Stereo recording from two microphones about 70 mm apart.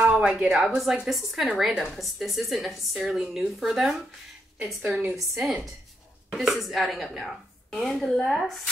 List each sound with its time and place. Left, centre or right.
0.0 s a woman's voice: centre